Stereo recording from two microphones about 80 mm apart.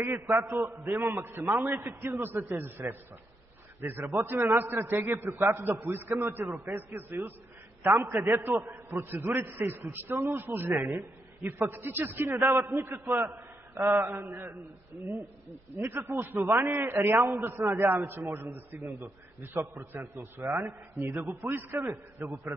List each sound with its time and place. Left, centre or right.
0.0 s a man's voice: right
8.3 s a man's voice: right
20.6 s a man's voice: right
21.7 s a man's voice: right